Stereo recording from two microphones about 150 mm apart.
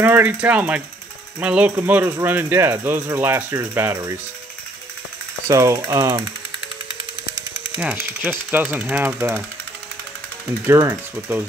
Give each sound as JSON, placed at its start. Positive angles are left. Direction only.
{"t": 0.0, "sound": "speech", "side_deg": -15}
{"t": 5.5, "sound": "speech", "side_deg": -20}
{"t": 7.7, "sound": "speech", "side_deg": -10}
{"t": 10.6, "sound": "speech", "side_deg": -20}